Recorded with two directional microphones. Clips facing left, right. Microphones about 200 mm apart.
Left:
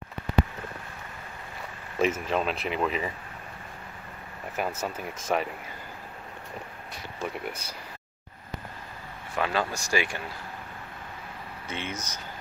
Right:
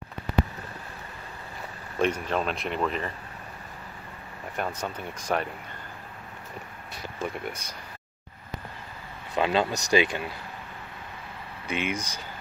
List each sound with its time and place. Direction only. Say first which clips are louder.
2.0 s speech: even; 5° left (ahead or behind)
4.6 s speech: left 1 dB; 5° left (ahead or behind)
7.4 s speech: even; 5° left (ahead or behind)
9.3 s speech: right 4 dB; 20° right (ahead or behind)
11.6 s speech: right 6 dB; 15° right (ahead or behind)